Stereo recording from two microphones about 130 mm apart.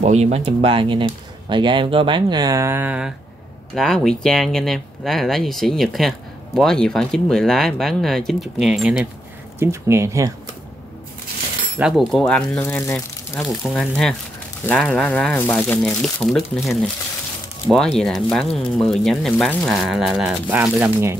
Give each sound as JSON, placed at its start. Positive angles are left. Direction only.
{"t": 0.0, "sound": "speech", "side_deg": -60}
{"t": 3.7, "sound": "speech", "side_deg": 5}
{"t": 9.6, "sound": "speech", "side_deg": -20}
{"t": 12.1, "sound": "speech", "side_deg": 10}
{"t": 13.4, "sound": "speech", "side_deg": 0}
{"t": 16.0, "sound": "speech", "side_deg": 0}